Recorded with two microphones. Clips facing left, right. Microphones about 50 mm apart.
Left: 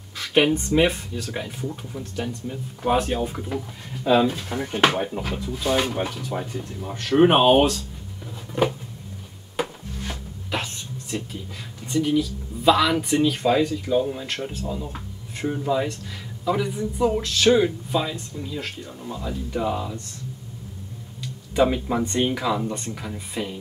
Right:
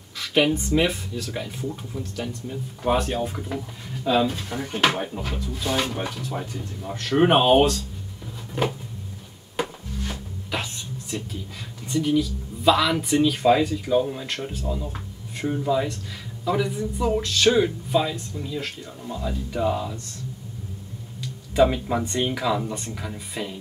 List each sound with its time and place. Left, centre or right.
0.3 s speech: centre
4.0 s speech: centre
8.3 s a sound: centre
9.6 s music: centre
13.4 s speech: centre
21.5 s speech: centre